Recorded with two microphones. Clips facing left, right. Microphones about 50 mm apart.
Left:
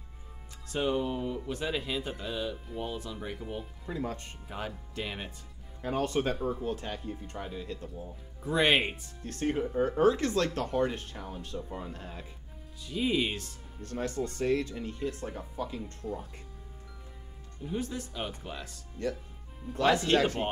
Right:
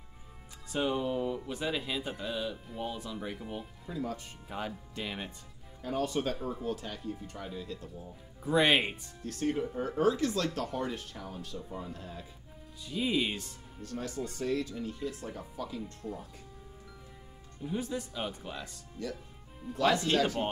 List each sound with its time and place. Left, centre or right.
0.7 s speech: centre
3.9 s speech: left
4.5 s speech: centre
5.8 s speech: left
8.5 s speech: centre
9.2 s speech: left
11.5 s speech: left
11.9 s speech: left
12.9 s speech: centre
13.8 s speech: left
17.6 s speech: centre
19.0 s speech: left